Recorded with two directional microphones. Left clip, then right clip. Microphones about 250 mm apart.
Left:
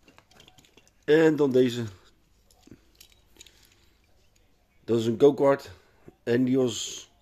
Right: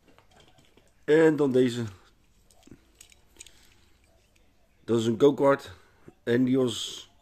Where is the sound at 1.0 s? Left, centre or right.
Centre.